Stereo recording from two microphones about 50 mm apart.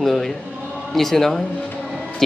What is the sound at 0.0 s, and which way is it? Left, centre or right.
Speech, centre.